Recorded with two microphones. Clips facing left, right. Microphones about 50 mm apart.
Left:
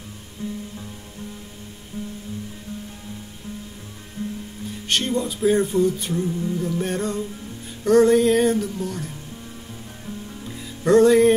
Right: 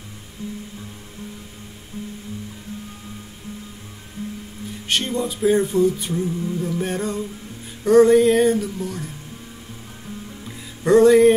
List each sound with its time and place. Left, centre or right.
0.4 s music: left
4.8 s music: centre
10.4 s music: centre